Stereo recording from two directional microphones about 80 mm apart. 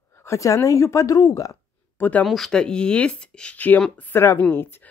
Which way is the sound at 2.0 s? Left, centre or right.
Centre.